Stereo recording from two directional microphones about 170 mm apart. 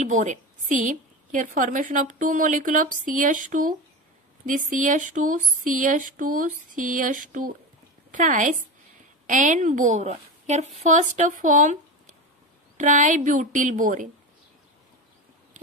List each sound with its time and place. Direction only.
0.0 s a woman's voice: 45° right (ahead or behind)